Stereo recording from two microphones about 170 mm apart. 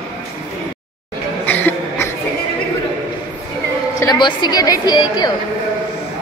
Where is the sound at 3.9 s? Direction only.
20° left (ahead or behind).